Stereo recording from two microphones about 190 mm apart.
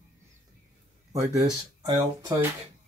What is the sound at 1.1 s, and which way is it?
Speech, 20° right (ahead or behind).